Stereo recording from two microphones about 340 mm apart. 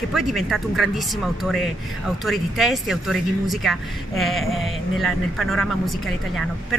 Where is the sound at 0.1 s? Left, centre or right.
Centre.